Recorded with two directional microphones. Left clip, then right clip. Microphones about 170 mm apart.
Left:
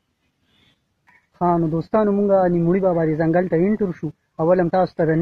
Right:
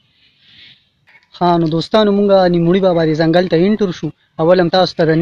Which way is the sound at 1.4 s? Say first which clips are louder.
Right 6 dB; 20° right (ahead or behind).